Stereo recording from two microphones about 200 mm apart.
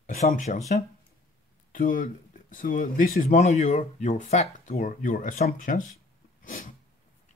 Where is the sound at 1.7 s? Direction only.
45° left (ahead or behind).